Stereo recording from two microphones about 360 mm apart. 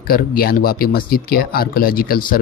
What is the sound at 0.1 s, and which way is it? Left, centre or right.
Speech, left.